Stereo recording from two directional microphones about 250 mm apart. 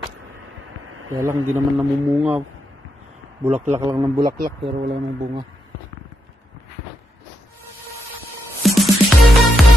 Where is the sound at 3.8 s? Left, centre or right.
Centre.